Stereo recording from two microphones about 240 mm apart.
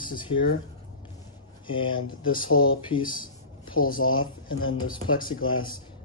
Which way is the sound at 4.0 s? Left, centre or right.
Left.